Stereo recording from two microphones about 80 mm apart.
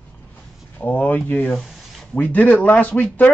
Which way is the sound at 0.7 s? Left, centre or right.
Centre.